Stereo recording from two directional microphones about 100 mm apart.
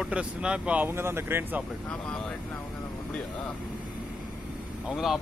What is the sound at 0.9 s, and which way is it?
Speech, 25° right (ahead or behind).